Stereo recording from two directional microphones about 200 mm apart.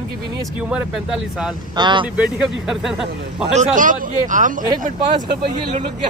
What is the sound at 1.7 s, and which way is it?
Speech, 20° right (ahead or behind).